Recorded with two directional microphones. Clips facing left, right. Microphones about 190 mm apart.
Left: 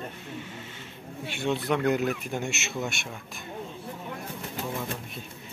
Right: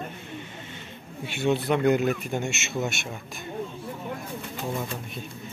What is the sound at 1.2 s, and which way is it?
A man's voice, centre (ahead or behind).